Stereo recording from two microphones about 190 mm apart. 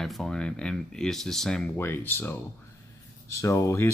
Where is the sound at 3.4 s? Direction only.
15° left (ahead or behind).